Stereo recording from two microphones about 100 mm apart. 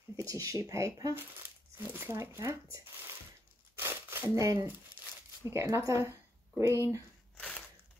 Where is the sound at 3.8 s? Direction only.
25° right (ahead or behind).